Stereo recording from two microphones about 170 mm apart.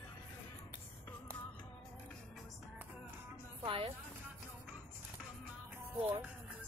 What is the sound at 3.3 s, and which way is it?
Music, 30° right (ahead or behind).